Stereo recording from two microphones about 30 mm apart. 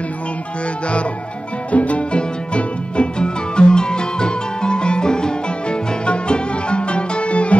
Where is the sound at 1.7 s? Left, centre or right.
Left.